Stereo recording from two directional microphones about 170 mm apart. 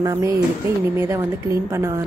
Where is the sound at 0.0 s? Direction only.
20° right (ahead or behind).